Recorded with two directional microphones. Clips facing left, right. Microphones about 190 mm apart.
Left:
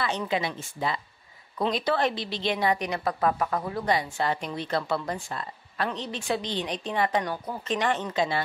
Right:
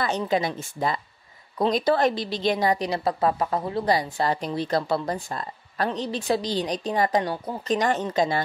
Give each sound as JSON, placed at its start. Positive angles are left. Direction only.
{"t": 0.3, "sound": "a woman's voice", "side_deg": -40}